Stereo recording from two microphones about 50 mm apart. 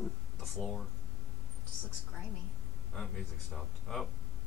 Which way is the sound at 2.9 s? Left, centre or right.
Centre.